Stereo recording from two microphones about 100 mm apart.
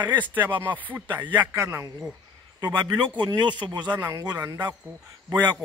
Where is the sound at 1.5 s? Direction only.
30° right (ahead or behind).